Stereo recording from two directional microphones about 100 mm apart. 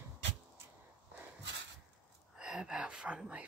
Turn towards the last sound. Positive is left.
turn(degrees=-10)  # may be behind; listen again after turning